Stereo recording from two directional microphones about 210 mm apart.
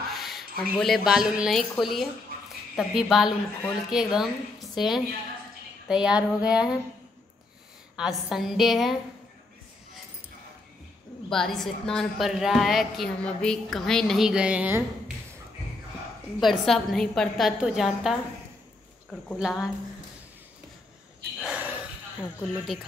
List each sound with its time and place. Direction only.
0.1 s a woman's voice: centre (ahead or behind)
7.9 s a woman's voice: centre (ahead or behind)
11.2 s a woman's voice: centre (ahead or behind)
16.3 s a woman's voice: centre (ahead or behind)
19.2 s a woman's voice: centre (ahead or behind)
21.5 s a sound: 5° right (ahead or behind)
22.2 s speech: 10° left (ahead or behind)